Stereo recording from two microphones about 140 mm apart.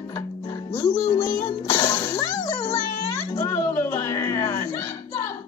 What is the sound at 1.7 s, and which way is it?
Music, 25° left (ahead or behind).